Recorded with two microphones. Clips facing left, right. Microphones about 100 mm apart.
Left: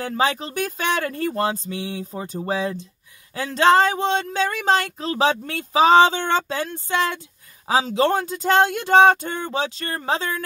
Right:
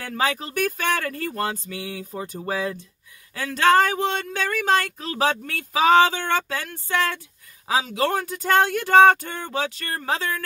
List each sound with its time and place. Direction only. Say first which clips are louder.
0.0 s speech: left 3 dB; 25° left (ahead or behind)